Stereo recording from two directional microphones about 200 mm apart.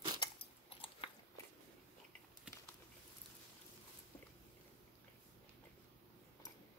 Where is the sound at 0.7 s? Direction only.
25° left (ahead or behind).